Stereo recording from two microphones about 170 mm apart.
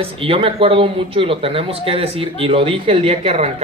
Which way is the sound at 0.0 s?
35° right (ahead or behind).